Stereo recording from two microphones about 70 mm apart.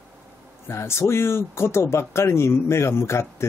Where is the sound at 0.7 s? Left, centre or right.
Left.